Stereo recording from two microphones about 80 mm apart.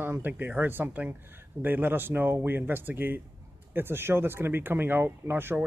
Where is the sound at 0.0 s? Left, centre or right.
Right.